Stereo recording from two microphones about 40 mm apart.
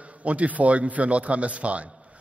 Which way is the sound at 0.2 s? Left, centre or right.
Right.